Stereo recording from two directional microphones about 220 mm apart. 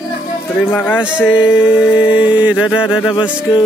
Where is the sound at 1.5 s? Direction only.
5° right (ahead or behind).